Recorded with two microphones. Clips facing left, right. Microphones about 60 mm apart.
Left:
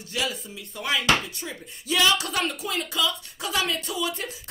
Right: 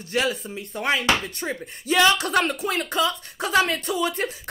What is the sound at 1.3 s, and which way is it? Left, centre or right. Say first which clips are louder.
Speech: right 7 dB; right.